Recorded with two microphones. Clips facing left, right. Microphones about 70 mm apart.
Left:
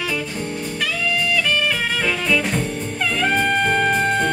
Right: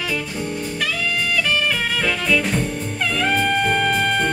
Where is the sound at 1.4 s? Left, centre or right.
Centre.